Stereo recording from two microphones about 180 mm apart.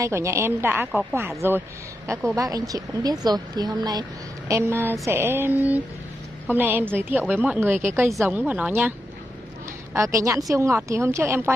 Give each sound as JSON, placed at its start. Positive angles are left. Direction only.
{"t": 0.0, "sound": "a woman's voice", "side_deg": -15}
{"t": 2.3, "sound": "a woman's voice", "side_deg": -20}
{"t": 8.1, "sound": "a woman's voice", "side_deg": 0}
{"t": 9.9, "sound": "a woman's voice", "side_deg": -15}